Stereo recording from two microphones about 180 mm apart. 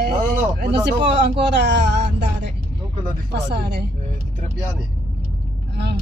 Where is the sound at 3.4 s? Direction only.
65° right (ahead or behind).